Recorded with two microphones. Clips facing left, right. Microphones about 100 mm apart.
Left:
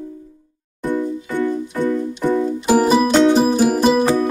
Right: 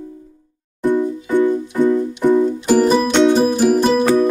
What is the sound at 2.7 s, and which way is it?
Music, 5° left (ahead or behind).